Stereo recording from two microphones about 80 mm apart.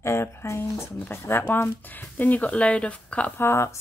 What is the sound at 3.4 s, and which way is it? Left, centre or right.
Speech, left.